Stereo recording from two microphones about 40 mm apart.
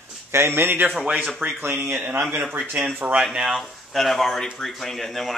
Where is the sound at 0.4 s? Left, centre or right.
Right.